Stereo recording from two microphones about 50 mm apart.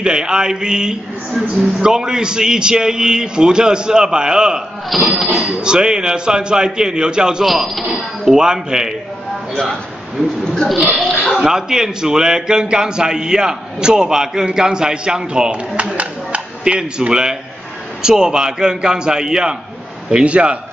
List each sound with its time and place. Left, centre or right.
0.0 s a man's voice: centre
7.4 s speech: centre
8.3 s a man's voice: centre
10.5 s speech: centre
11.0 s oink: centre
11.4 s a man's voice: centre